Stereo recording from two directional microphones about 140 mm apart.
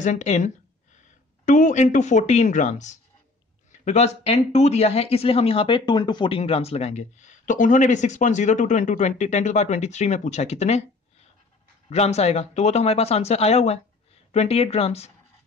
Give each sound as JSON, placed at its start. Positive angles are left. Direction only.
{"t": 0.0, "sound": "speech", "side_deg": 55}
{"t": 11.9, "sound": "speech", "side_deg": 50}